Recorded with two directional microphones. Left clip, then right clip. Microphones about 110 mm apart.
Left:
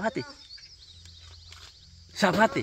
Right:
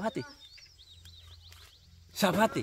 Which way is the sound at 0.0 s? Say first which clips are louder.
Left 4 dB; 20° right (ahead or behind).